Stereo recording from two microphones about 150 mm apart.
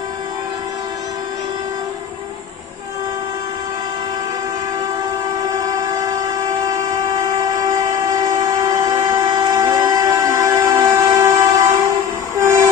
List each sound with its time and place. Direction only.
5.5 s train: 25° right (ahead or behind)